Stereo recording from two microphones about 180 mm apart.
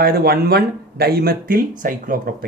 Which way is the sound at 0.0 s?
55° right (ahead or behind).